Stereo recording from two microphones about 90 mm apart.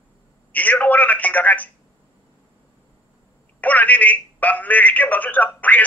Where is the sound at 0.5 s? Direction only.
20° left (ahead or behind).